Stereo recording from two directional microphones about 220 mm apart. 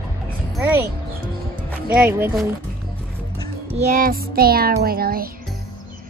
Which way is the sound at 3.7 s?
35° right (ahead or behind).